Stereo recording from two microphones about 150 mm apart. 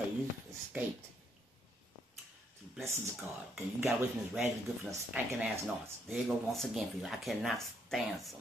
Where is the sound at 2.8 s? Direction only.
15° right (ahead or behind).